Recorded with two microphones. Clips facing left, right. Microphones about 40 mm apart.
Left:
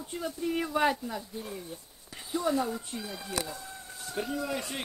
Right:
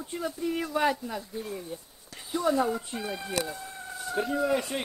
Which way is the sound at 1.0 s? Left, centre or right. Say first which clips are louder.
Right 2 dB; centre.